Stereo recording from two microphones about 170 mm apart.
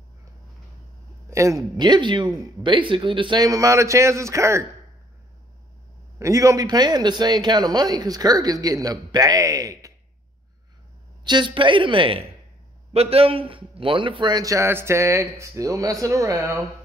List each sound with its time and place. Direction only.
1.3 s a man's voice: 20° right (ahead or behind)
6.1 s a man's voice: 20° right (ahead or behind)
11.2 s a man's voice: 25° right (ahead or behind)